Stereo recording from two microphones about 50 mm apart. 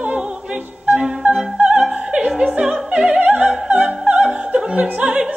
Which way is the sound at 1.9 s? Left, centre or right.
Right.